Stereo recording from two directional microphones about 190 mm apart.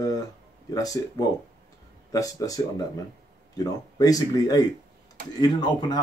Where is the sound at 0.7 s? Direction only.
20° left (ahead or behind).